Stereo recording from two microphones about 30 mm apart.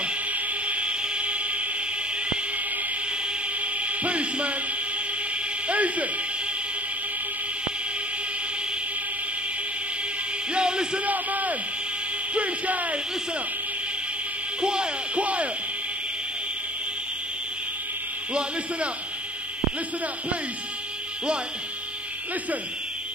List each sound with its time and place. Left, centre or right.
0.3 s music: right
1.0 s a sound: right
3.8 s music: right
5.7 s speech: right
10.5 s music: right
11.1 s a sound: right
12.4 s speech: right
14.6 s music: right
15.2 s speech: right